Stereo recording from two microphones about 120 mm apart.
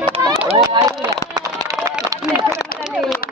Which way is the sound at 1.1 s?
30° right (ahead or behind).